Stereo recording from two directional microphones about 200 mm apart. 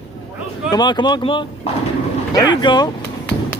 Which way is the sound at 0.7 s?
20° left (ahead or behind).